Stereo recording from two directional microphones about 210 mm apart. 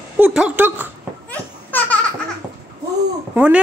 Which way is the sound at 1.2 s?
10° left (ahead or behind).